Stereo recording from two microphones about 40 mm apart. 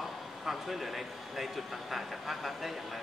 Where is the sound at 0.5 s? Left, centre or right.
Centre.